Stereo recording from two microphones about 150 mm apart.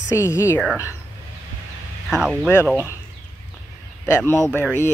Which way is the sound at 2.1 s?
5° right (ahead or behind).